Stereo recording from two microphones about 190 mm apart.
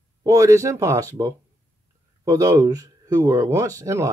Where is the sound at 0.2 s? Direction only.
15° right (ahead or behind).